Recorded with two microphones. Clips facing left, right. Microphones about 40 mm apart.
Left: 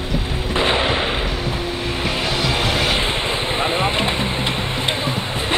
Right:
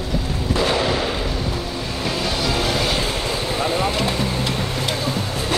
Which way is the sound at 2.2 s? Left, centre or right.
Left.